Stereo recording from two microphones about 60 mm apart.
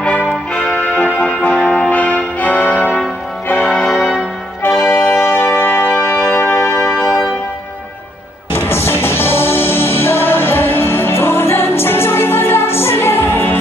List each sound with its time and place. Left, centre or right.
0.0 s music: centre
4.8 s music: left
8.5 s music: left